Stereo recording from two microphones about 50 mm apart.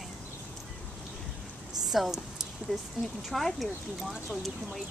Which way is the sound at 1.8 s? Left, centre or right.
Centre.